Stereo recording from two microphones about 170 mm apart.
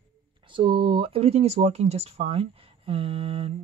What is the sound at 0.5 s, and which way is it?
Speech, 30° right (ahead or behind).